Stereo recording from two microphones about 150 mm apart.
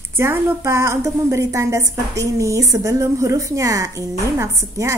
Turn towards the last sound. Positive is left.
turn(degrees=-20)  # may be behind; listen again after turning